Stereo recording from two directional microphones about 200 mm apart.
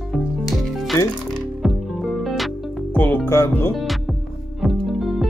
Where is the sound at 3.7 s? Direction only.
Centre (ahead or behind).